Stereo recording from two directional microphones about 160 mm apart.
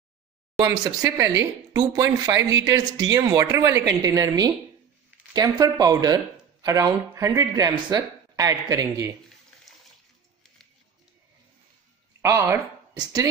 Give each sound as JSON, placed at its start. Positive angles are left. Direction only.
{"t": 0.6, "sound": "speech", "side_deg": -20}
{"t": 12.2, "sound": "speech", "side_deg": -20}